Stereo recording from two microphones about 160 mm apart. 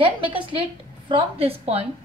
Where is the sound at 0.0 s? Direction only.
30° right (ahead or behind).